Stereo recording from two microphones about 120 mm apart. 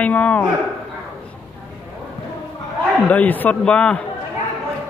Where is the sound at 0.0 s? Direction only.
10° left (ahead or behind).